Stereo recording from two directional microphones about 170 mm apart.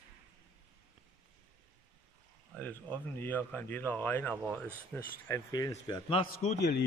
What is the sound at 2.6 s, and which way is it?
Speech, 10° left (ahead or behind).